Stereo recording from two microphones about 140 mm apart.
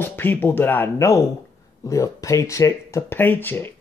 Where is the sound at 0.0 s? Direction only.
15° left (ahead or behind).